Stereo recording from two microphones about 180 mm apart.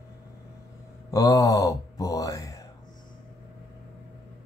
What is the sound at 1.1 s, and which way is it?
Speech, 20° left (ahead or behind).